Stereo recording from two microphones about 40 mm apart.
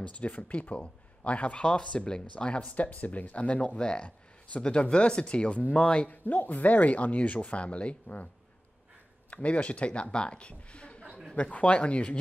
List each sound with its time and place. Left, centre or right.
0.1 s a man's voice: left
2.7 s a man's voice: left
6.0 s speech: left
9.3 s a man's voice: left